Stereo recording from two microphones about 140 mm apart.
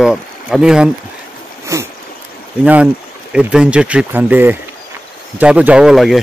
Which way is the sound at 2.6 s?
10° right (ahead or behind).